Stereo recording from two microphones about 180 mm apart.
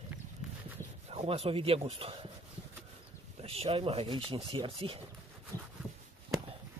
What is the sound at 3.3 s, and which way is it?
Speech, 35° right (ahead or behind).